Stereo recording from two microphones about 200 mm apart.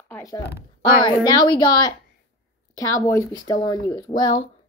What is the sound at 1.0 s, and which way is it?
Speech, 20° left (ahead or behind).